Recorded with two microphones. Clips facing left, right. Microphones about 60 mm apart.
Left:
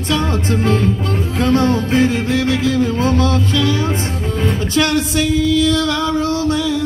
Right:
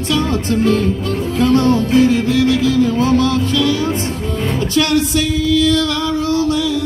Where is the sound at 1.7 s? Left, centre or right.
Left.